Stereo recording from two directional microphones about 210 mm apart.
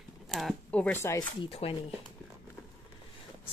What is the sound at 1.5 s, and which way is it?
Speech, 25° left (ahead or behind).